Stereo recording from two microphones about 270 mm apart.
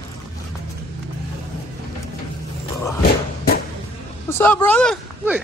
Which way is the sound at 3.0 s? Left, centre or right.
Left.